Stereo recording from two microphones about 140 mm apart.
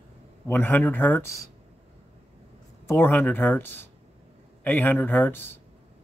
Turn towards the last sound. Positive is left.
turn(degrees=15)  # may be behind; listen again after turning